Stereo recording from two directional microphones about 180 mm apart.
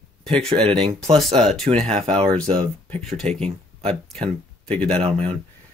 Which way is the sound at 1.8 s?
35° right (ahead or behind).